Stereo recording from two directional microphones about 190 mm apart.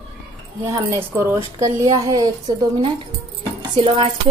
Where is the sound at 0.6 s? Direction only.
15° right (ahead or behind).